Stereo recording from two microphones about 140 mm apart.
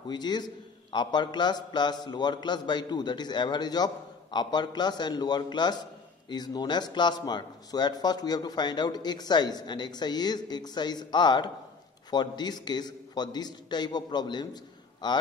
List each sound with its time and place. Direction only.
0.1 s a man's voice: 30° left (ahead or behind)